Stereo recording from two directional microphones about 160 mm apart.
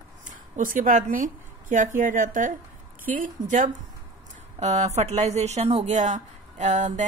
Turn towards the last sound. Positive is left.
turn(degrees=-50)  # may be behind; listen again after turning